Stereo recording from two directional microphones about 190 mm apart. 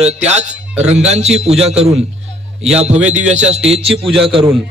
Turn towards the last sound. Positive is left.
turn(degrees=-30)  # may be behind; listen again after turning